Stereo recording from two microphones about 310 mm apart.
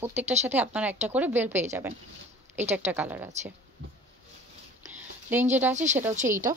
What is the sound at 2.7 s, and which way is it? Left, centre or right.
Speech, centre.